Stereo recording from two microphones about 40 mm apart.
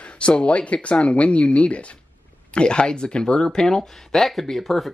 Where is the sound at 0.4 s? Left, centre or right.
Left.